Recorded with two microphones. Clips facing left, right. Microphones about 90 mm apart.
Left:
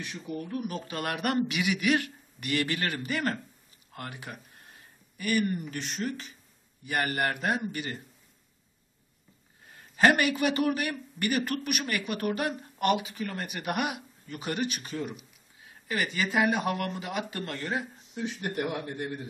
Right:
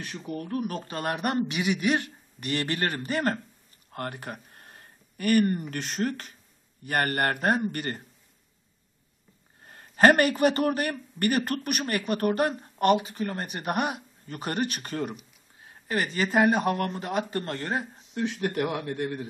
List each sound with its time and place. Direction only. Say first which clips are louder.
0.3 s a man's voice: right 3 dB; 50° right (ahead or behind)
1.0 s a man's voice: right 1 dB; 30° right (ahead or behind); by 8.0 s 50° right (ahead or behind)
9.7 s a man's voice: right 4 dB; 45° right (ahead or behind)
15.6 s speech: right 3 dB; 40° right (ahead or behind)
18.1 s speech: right 4 dB; 70° right (ahead or behind)